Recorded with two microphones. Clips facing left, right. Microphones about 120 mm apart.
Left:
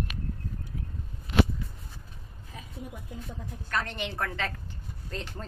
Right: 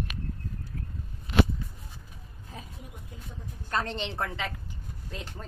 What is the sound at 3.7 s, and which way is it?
Speech, 25° right (ahead or behind).